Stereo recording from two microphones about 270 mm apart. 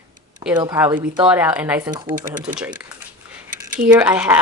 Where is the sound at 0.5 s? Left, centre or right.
Centre.